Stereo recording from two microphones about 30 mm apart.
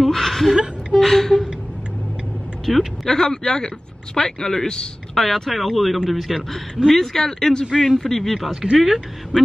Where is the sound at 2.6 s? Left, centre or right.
Centre.